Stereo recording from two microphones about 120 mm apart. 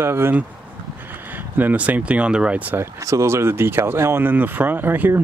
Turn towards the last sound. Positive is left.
turn(degrees=-15)  # may be behind; listen again after turning